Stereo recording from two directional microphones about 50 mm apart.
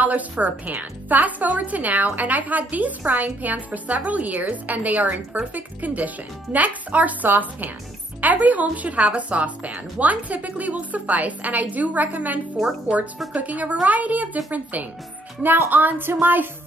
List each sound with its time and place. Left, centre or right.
0.0 s a woman's voice: right
12.5 s speech: centre
13.3 s a woman's voice: right